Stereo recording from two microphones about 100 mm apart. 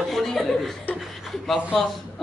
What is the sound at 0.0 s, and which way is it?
Chuckle, centre (ahead or behind).